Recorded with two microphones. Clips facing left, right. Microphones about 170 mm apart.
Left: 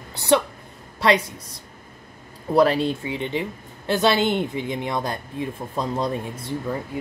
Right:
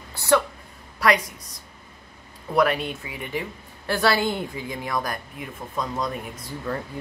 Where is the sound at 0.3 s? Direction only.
20° left (ahead or behind).